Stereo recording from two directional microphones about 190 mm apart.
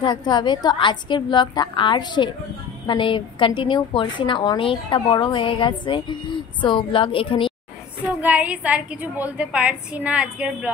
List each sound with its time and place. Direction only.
0.0 s a woman's voice: 25° left (ahead or behind)
8.2 s a woman's voice: 10° right (ahead or behind)